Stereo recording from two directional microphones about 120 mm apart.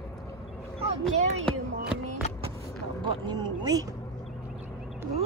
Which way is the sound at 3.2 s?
35° right (ahead or behind).